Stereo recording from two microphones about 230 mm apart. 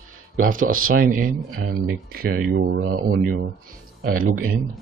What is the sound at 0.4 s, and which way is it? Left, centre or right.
Speech, right.